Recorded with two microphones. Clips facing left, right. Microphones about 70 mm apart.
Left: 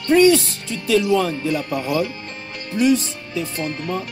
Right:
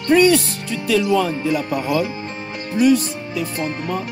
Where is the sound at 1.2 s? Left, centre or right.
Right.